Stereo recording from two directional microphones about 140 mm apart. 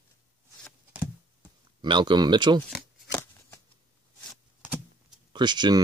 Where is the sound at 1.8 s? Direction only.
35° right (ahead or behind).